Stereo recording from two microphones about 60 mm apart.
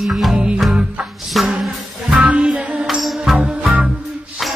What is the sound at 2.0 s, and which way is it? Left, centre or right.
Music, centre.